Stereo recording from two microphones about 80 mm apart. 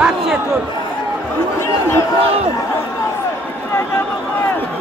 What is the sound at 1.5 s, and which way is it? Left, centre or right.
Speech, left.